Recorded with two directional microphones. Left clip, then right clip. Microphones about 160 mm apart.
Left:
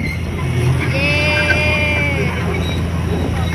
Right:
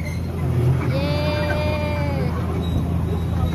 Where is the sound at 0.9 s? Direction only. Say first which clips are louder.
Left 10 dB; 25° right (ahead or behind).